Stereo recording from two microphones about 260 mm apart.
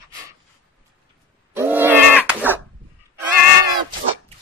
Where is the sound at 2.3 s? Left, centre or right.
Centre.